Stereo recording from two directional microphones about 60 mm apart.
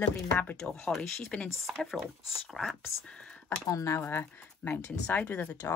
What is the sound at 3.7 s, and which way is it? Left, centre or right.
Speech, left.